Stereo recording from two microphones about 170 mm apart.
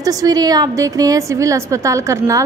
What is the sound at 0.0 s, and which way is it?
A woman's voice, 20° right (ahead or behind).